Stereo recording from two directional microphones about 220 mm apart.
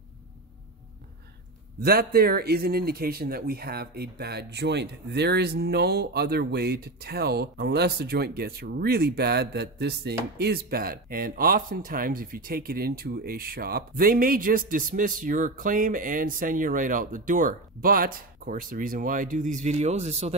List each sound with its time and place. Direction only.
1.8 s speech: 45° right (ahead or behind); by 20.3 s 30° right (ahead or behind)